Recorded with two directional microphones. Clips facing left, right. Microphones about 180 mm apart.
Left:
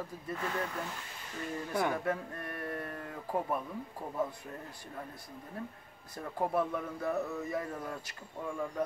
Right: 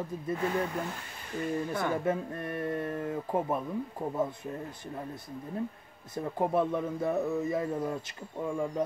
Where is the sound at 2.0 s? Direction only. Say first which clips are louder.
Right 5 dB; 20° right (ahead or behind).